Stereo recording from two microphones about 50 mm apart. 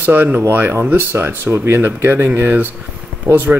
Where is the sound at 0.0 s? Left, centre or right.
Right.